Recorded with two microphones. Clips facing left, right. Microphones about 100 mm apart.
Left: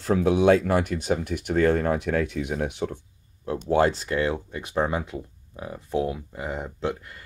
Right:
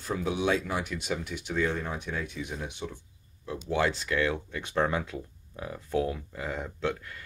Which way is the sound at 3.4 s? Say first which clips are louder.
Left 7 dB; 50° left (ahead or behind).